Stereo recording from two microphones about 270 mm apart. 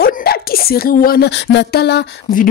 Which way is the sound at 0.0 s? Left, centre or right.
Left.